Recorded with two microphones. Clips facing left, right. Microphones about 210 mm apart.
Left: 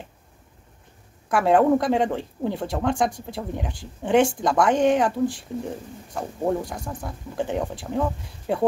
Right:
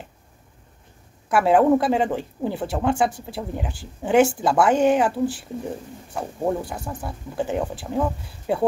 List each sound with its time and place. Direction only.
1.3 s speech: 5° right (ahead or behind)